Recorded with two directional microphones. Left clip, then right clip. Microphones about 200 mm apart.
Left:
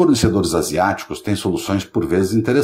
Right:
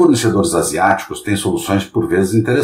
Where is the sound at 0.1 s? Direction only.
30° left (ahead or behind).